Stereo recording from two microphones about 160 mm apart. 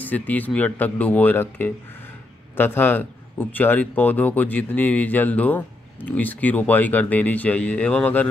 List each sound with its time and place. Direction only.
0.0 s a man's voice: 10° left (ahead or behind)